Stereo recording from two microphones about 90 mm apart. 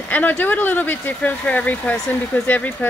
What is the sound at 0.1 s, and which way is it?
A woman's voice, 20° left (ahead or behind).